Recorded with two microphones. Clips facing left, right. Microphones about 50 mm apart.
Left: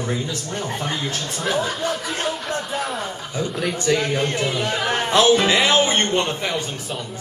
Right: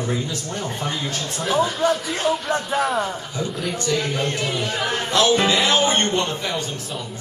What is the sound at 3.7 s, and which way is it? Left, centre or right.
A man's voice, left.